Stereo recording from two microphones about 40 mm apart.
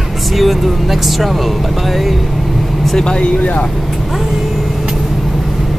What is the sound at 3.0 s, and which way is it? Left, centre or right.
Speech, left.